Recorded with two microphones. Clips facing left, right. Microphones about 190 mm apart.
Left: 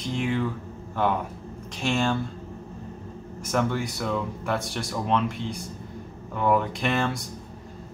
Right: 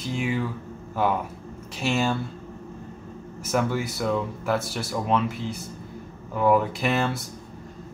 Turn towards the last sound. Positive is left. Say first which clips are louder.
# right 1 dB
turn(degrees=-5)  # may be behind; listen again after turning